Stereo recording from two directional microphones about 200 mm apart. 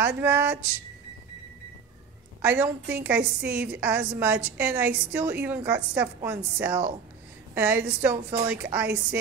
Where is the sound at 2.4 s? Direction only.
10° right (ahead or behind).